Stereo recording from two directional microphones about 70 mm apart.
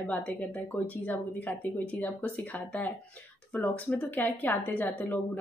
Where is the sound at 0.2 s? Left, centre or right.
Left.